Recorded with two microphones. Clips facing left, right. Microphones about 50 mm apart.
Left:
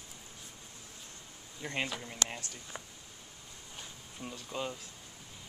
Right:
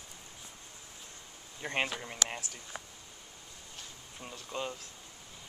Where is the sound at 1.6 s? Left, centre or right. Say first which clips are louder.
Right 3 dB; right.